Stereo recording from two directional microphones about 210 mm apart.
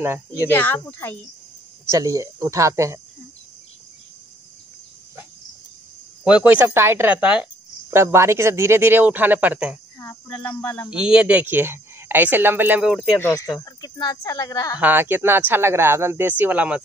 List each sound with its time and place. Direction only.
0.5 s speech: 10° left (ahead or behind)
1.9 s speech: 15° right (ahead or behind)
6.2 s speech: 5° right (ahead or behind)
9.9 s speech: 15° left (ahead or behind)
10.9 s speech: 5° right (ahead or behind)
13.2 s speech: 15° left (ahead or behind)
14.8 s speech: 10° right (ahead or behind)